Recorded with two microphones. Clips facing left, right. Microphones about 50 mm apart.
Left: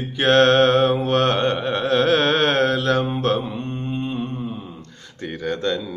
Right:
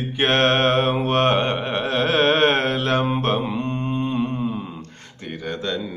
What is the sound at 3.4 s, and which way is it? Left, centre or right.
Mantra, right.